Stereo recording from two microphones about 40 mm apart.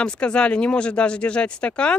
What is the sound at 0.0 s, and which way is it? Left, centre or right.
Speech, left.